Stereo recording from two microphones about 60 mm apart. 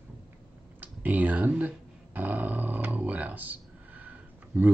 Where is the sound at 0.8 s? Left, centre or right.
Right.